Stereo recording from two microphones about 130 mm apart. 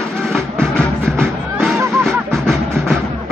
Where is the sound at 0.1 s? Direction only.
5° left (ahead or behind).